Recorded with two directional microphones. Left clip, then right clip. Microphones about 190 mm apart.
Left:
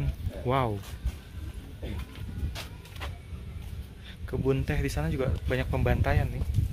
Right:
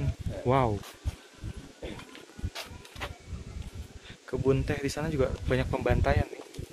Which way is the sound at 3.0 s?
15° left (ahead or behind).